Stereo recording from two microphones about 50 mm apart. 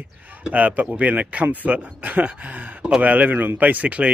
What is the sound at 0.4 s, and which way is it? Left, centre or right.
Speech, right.